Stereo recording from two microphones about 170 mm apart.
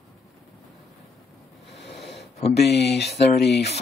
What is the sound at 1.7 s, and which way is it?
Snort, 80° left.